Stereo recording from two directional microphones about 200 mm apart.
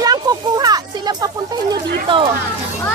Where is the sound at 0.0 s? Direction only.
20° right (ahead or behind).